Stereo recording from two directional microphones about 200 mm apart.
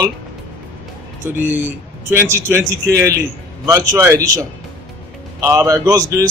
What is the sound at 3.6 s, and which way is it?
Speech, 15° right (ahead or behind).